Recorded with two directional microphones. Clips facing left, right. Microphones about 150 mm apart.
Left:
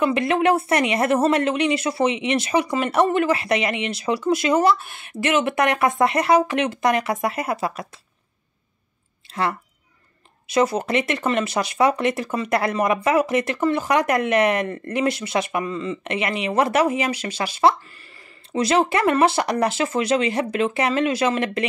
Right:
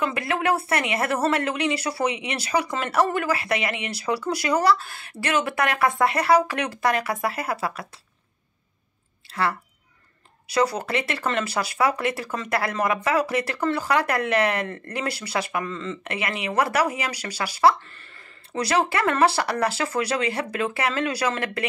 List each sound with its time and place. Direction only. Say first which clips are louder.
0.1 s speech: left 5 dB; 25° left (ahead or behind)
9.3 s speech: left 1 dB; 20° left (ahead or behind)